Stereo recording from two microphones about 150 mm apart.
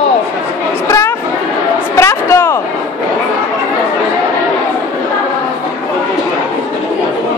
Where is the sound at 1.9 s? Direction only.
20° left (ahead or behind).